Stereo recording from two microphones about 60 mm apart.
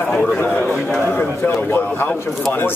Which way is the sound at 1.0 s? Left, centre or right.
Left.